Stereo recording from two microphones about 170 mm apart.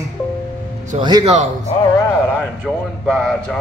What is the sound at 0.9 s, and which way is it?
Speech, 40° right (ahead or behind).